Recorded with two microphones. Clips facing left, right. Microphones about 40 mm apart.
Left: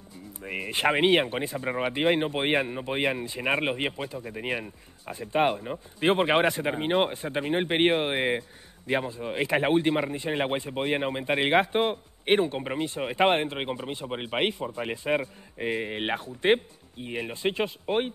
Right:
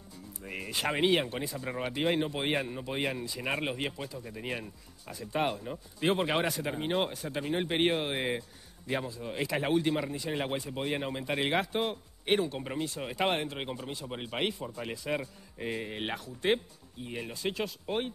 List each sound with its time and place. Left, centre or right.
0.4 s speech: left